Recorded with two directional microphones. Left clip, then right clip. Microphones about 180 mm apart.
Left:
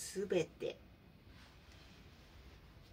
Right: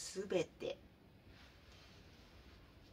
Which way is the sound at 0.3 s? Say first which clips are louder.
Left 2 dB; 15° right (ahead or behind).